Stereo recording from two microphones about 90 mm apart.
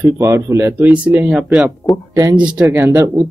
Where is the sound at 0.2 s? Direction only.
30° right (ahead or behind).